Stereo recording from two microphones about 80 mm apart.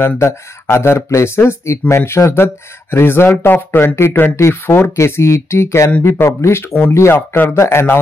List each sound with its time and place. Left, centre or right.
0.0 s speech: left